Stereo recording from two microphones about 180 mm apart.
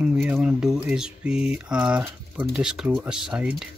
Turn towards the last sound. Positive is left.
turn(degrees=-5)  # may be behind; listen again after turning